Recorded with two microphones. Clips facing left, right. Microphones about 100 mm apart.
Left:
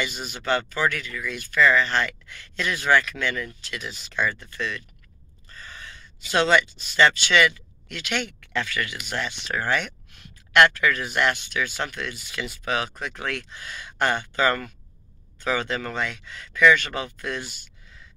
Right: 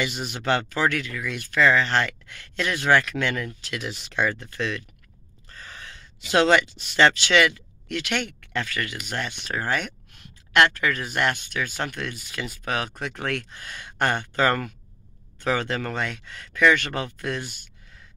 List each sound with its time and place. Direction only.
0.0 s speech: 70° right (ahead or behind); by 4.8 s 90° right
5.5 s speech: 70° right (ahead or behind); by 8.4 s 55° right (ahead or behind)
8.5 s speech: 40° right (ahead or behind)